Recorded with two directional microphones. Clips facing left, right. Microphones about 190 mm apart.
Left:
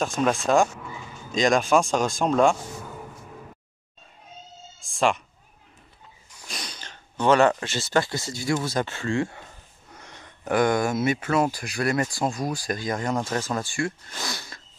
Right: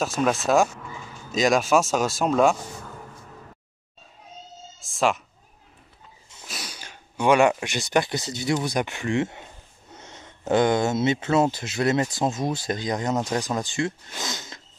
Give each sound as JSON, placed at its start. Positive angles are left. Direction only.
{"t": 0.0, "sound": "speech", "side_deg": -5}
{"t": 4.7, "sound": "speech", "side_deg": 0}
{"t": 6.4, "sound": "speech", "side_deg": -5}